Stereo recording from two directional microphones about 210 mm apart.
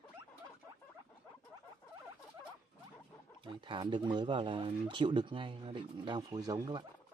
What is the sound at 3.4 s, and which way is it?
Speech, 20° right (ahead or behind).